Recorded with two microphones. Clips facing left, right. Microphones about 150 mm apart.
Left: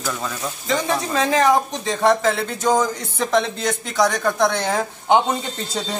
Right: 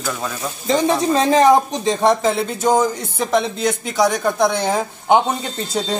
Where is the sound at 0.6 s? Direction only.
30° right (ahead or behind).